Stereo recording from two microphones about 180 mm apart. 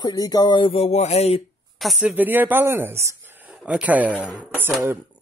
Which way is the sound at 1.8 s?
Centre (ahead or behind).